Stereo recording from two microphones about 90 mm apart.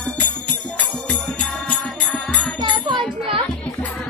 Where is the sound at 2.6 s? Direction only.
70° right (ahead or behind).